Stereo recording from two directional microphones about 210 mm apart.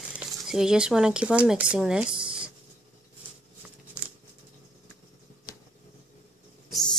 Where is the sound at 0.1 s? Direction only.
5° right (ahead or behind).